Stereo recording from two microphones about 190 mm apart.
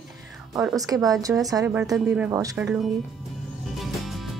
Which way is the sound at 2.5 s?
Centre (ahead or behind).